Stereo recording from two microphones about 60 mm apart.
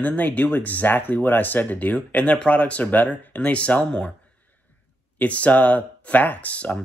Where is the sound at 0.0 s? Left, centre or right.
Left.